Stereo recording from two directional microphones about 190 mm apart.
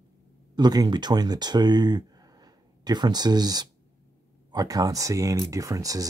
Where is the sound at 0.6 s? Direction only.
20° right (ahead or behind).